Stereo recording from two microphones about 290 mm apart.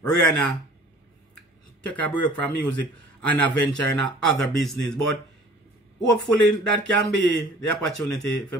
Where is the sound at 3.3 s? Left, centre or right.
Centre.